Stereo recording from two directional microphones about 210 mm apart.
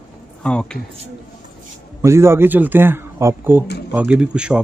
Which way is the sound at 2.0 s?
10° right (ahead or behind).